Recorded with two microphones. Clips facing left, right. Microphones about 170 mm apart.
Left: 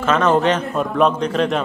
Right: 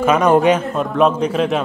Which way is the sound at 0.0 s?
10° right (ahead or behind).